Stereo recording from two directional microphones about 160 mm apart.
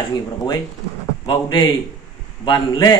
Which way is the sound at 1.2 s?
25° left (ahead or behind).